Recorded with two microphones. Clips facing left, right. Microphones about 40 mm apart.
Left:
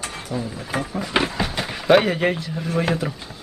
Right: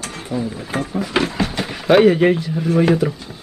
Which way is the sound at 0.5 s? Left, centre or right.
Centre.